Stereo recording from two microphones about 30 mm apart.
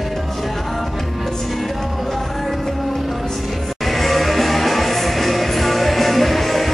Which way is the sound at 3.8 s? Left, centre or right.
Centre.